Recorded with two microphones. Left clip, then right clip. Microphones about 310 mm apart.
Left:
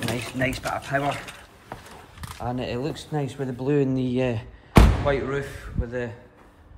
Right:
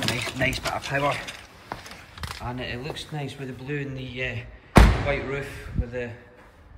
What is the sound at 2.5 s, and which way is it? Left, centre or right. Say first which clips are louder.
Speech: left 6 dB; centre.